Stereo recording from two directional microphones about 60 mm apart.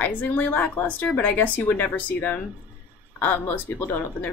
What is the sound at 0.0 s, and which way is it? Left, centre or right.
Speech, left.